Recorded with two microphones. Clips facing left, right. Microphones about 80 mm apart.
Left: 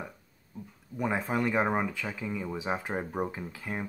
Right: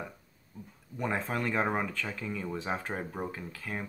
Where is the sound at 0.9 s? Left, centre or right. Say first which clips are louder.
Left 3 dB; centre.